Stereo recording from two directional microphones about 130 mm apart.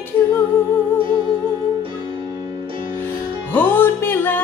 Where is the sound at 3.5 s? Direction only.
15° left (ahead or behind).